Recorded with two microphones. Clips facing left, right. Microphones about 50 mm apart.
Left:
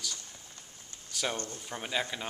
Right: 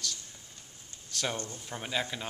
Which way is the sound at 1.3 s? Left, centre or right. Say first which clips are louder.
Even; centre.